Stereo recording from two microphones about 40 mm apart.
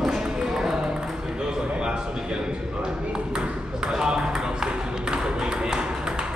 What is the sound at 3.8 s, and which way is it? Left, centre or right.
Ping, centre.